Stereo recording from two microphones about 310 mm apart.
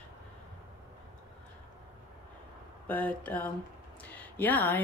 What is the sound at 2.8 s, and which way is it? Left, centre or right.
Speech, centre.